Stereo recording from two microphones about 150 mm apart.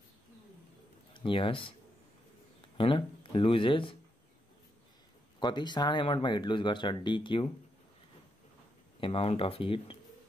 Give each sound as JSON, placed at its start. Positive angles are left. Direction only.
{"t": 1.1, "sound": "speech", "side_deg": 35}
{"t": 2.8, "sound": "speech", "side_deg": 35}
{"t": 5.4, "sound": "speech", "side_deg": 30}
{"t": 9.0, "sound": "speech", "side_deg": 40}